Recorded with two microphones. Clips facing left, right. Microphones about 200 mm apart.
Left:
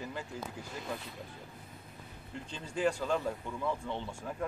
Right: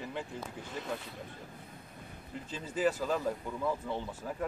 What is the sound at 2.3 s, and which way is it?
Speech, 5° right (ahead or behind).